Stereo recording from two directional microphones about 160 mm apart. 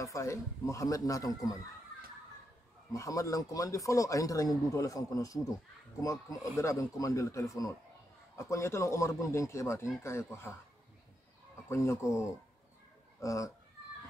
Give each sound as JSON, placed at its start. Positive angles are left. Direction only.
{"t": 0.0, "sound": "speech", "side_deg": 20}
{"t": 2.9, "sound": "speech", "side_deg": 20}
{"t": 11.7, "sound": "speech", "side_deg": 15}